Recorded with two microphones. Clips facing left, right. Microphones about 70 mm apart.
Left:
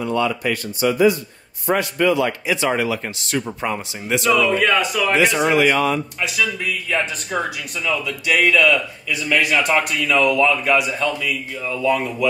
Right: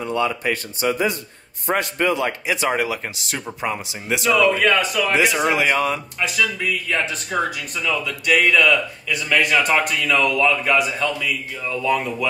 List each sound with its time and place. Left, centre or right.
0.0 s speech: centre
0.4 s a man's voice: right
2.5 s speech: centre